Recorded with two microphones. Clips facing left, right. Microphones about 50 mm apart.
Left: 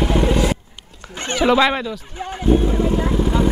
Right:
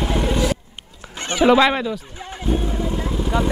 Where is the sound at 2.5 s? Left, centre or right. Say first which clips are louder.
Left 6 dB; left.